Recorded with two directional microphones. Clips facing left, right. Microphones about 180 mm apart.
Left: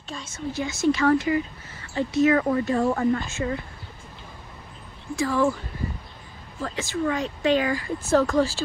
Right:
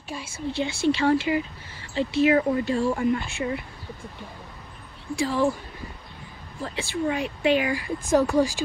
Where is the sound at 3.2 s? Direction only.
15° right (ahead or behind).